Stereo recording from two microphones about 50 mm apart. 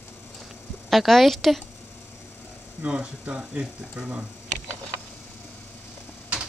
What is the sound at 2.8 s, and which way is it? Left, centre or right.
Speech, right.